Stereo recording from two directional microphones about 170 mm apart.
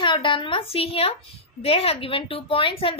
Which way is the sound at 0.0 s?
30° left (ahead or behind).